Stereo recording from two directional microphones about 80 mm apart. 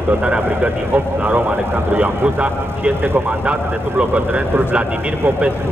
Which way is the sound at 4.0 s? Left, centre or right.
Centre.